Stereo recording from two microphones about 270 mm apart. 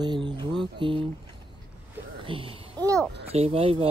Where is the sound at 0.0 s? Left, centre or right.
Centre.